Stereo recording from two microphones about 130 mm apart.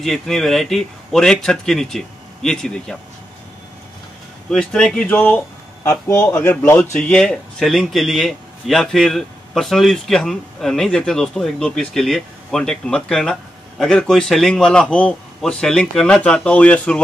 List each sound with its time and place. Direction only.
0.0 s speech: centre (ahead or behind)
4.5 s speech: 5° left (ahead or behind)
5.9 s a man's voice: 25° left (ahead or behind)
6.3 s speech: 15° left (ahead or behind)